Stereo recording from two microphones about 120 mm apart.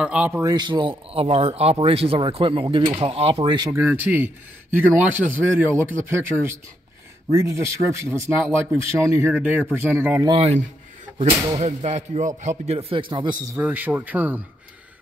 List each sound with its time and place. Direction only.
0.0 s a man's voice: 10° right (ahead or behind)
0.4 s speech: 35° right (ahead or behind)
3.7 s a man's voice: 15° right (ahead or behind)
9.3 s a man's voice: 10° right (ahead or behind)
9.8 s a man's voice: 20° right (ahead or behind)
11.5 s speech: 70° right (ahead or behind)
13.1 s a man's voice: 40° right (ahead or behind)
13.6 s a man's voice: 15° right (ahead or behind)